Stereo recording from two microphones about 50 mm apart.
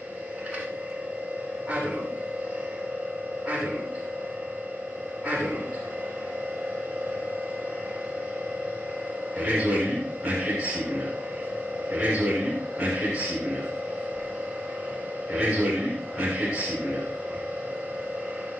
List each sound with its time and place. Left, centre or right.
3.4 s music: right
9.4 s music: right
11.9 s a man's voice: right
15.3 s a man's voice: right